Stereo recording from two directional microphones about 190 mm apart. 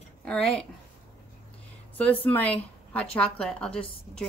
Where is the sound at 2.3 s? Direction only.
10° left (ahead or behind).